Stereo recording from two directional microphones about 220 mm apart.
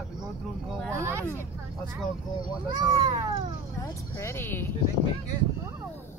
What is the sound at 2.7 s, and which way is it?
Speech, 20° right (ahead or behind).